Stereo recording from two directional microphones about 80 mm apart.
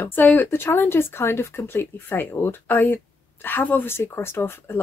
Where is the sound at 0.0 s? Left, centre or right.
Left.